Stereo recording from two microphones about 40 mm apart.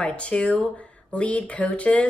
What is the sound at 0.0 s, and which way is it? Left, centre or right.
Speech, left.